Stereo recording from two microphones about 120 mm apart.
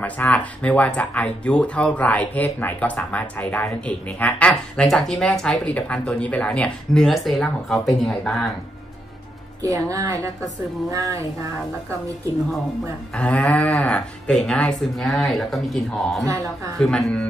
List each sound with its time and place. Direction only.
0.0 s speech: 10° left (ahead or behind)
9.6 s a woman's voice: 30° right (ahead or behind)
13.1 s speech: 10° left (ahead or behind)